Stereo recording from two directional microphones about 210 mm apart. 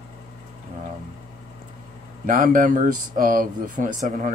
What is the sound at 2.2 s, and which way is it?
Speech, 40° right (ahead or behind).